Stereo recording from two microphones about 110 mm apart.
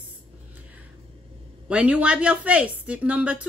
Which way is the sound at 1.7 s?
10° right (ahead or behind).